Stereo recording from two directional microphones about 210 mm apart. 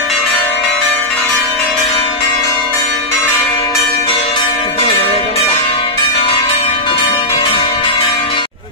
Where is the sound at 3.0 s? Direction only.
10° left (ahead or behind).